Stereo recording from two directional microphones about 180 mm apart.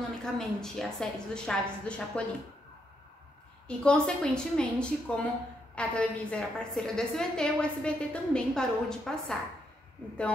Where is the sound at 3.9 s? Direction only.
5° left (ahead or behind).